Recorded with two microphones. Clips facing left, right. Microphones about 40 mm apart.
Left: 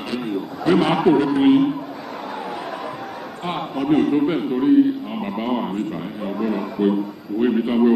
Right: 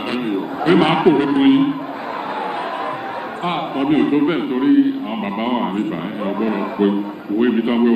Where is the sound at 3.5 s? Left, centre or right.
Right.